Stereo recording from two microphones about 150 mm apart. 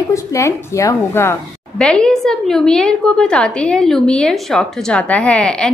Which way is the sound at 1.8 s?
5° left (ahead or behind).